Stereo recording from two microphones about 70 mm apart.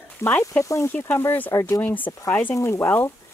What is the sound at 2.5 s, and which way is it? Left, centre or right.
Speech, left.